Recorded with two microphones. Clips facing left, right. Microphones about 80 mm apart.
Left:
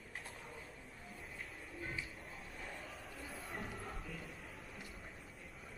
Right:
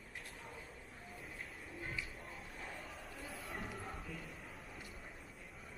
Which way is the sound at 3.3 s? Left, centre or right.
Centre.